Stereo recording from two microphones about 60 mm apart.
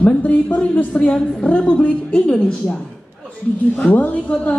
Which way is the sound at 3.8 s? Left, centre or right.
Left.